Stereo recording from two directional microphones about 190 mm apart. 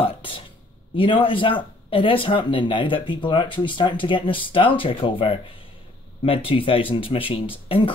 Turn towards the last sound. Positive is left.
turn(degrees=25)  # may be behind; listen again after turning